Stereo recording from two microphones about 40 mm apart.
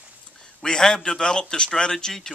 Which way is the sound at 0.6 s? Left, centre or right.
Centre.